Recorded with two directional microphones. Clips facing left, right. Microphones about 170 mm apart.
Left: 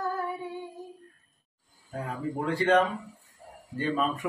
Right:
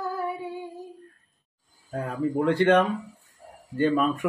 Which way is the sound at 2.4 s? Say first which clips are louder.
Right 3 dB; 70° right (ahead or behind).